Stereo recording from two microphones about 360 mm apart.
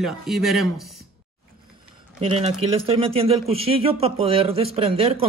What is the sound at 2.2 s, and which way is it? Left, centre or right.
Speech, centre.